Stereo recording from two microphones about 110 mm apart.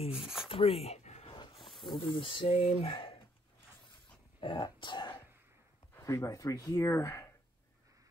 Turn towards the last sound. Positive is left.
turn(degrees=25)  # may be behind; listen again after turning